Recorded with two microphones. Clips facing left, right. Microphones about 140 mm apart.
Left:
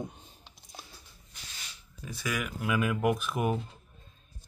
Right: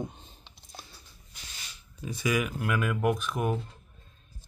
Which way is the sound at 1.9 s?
5° right (ahead or behind).